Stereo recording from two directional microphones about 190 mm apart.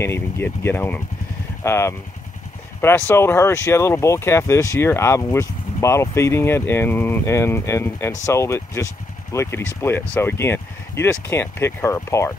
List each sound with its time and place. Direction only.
0.0 s speech: 15° left (ahead or behind)
3.1 s speech: 10° left (ahead or behind)